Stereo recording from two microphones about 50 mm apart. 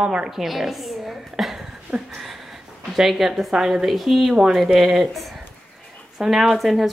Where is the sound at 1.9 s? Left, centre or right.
Right.